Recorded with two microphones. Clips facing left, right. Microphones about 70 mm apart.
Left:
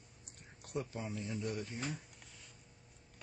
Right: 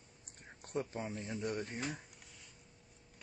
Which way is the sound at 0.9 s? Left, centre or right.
Right.